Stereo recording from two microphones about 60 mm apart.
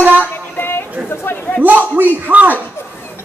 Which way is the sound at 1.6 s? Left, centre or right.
Right.